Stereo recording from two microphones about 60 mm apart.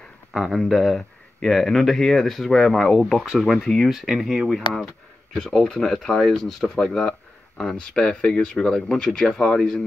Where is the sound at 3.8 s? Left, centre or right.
Centre.